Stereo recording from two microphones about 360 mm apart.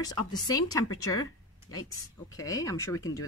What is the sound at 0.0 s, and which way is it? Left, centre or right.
Speech, centre.